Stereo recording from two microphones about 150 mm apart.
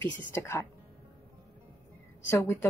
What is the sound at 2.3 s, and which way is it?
Speech, 15° left (ahead or behind).